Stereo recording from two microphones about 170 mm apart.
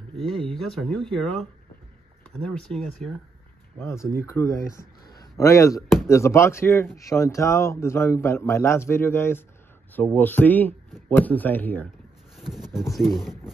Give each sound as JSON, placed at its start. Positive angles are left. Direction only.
{"t": 0.2, "sound": "speech", "side_deg": 0}
{"t": 3.7, "sound": "speech", "side_deg": 15}
{"t": 12.4, "sound": "a sound", "side_deg": 0}
{"t": 12.9, "sound": "speech", "side_deg": 0}